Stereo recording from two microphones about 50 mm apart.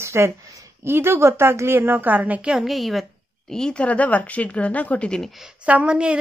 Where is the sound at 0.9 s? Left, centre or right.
Right.